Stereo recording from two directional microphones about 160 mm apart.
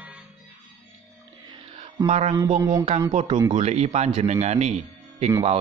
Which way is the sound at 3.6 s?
40° right (ahead or behind).